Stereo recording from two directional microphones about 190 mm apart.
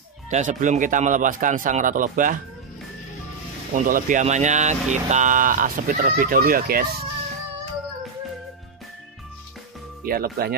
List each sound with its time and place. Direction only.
0.3 s speech: 40° right (ahead or behind)
3.7 s speech: 45° right (ahead or behind)
10.0 s speech: 50° right (ahead or behind)